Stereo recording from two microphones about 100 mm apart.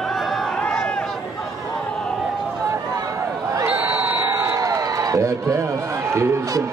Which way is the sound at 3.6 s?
20° right (ahead or behind).